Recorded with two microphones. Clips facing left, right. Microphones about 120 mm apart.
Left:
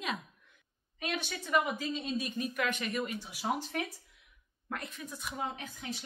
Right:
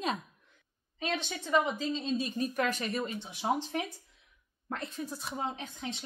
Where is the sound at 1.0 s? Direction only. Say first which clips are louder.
Right 2 dB; 30° right (ahead or behind).